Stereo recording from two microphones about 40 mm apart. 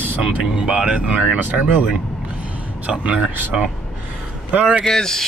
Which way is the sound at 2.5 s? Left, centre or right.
Right.